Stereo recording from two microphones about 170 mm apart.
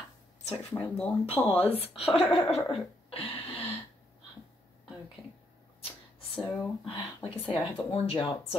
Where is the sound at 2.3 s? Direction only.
35° left (ahead or behind).